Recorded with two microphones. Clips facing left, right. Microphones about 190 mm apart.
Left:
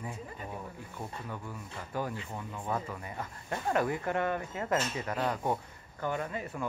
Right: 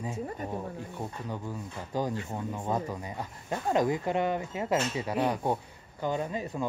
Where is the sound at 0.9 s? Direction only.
20° right (ahead or behind).